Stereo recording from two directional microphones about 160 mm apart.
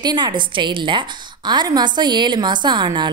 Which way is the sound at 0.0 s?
25° right (ahead or behind).